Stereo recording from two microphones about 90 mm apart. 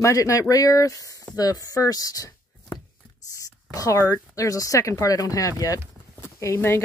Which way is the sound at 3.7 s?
35° left (ahead or behind).